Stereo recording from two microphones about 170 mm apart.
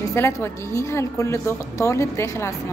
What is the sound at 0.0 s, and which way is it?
A woman's voice, 15° left (ahead or behind).